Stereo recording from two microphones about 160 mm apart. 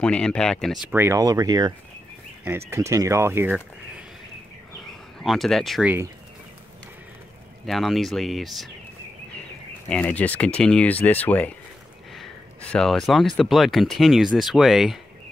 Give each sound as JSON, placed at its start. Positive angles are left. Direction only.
{"t": 0.0, "sound": "speech", "side_deg": 5}
{"t": 0.9, "sound": "speech", "side_deg": -15}
{"t": 2.7, "sound": "speech", "side_deg": -20}
{"t": 5.2, "sound": "speech", "side_deg": 0}
{"t": 7.6, "sound": "speech", "side_deg": 0}
{"t": 9.8, "sound": "speech", "side_deg": 10}
{"t": 12.7, "sound": "speech", "side_deg": 5}